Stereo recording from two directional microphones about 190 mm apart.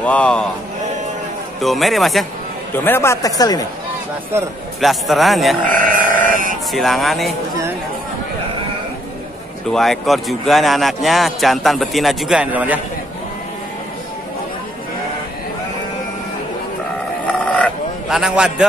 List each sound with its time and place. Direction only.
0.0 s a man's voice: 5° left (ahead or behind)
1.6 s a man's voice: centre (ahead or behind); by 3.6 s 20° left (ahead or behind)
4.7 s a man's voice: centre (ahead or behind)
5.7 s sheep: 45° right (ahead or behind)
6.7 s a man's voice: centre (ahead or behind)
9.7 s a man's voice: centre (ahead or behind)
18.1 s a man's voice: 5° right (ahead or behind)